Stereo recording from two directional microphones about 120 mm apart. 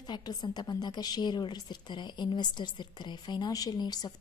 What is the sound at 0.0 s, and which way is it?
A woman's voice, 35° left (ahead or behind).